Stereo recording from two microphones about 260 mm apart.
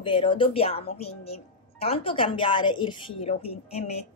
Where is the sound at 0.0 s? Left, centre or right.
Centre.